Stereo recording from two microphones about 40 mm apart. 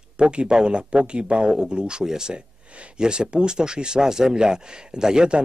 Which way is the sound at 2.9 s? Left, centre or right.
Right.